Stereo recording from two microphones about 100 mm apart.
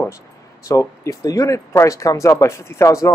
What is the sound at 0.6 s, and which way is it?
Speech, 30° left (ahead or behind).